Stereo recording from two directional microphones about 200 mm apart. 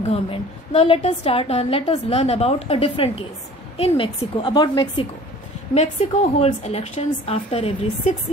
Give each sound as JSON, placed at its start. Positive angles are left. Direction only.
{"t": 0.0, "sound": "a woman's voice", "side_deg": 30}